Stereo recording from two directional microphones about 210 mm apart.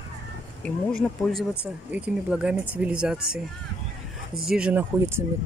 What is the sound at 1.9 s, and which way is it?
Speech, 5° right (ahead or behind).